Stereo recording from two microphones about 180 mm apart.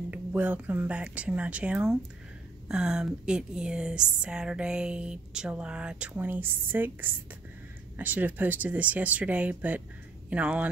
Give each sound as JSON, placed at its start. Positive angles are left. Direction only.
{"t": 0.1, "sound": "a woman's voice", "side_deg": -10}